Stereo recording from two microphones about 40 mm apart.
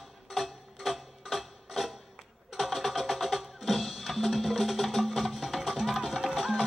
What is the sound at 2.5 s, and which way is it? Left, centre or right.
Music, centre.